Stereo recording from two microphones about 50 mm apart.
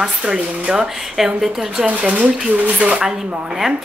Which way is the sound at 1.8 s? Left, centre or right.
Right.